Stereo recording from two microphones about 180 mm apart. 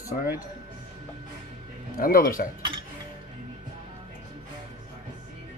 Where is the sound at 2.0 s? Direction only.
55° left (ahead or behind).